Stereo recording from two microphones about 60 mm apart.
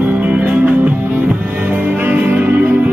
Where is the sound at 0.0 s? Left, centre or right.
Right.